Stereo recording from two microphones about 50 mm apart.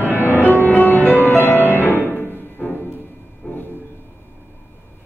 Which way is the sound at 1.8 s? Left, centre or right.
Left.